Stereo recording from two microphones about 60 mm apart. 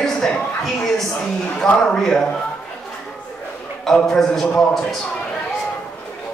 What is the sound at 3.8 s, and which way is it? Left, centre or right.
Speech, centre.